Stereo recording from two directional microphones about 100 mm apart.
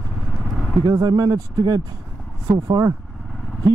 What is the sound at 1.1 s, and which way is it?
Speech, 35° right (ahead or behind).